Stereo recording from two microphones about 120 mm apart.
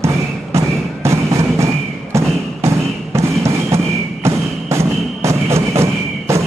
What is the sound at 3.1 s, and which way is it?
Music, 25° right (ahead or behind).